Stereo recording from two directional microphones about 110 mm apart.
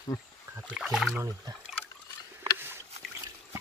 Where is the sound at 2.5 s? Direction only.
20° right (ahead or behind).